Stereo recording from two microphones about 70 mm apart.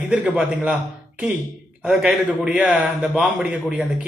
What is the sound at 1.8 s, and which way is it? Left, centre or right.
Speech, centre.